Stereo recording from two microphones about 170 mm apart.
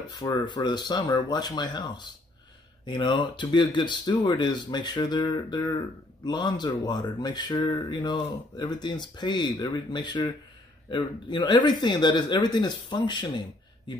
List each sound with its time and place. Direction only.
0.1 s speech: 25° left (ahead or behind)